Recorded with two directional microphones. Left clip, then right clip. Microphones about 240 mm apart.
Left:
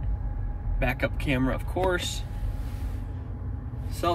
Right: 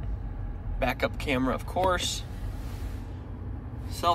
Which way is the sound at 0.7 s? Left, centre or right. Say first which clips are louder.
Even; right.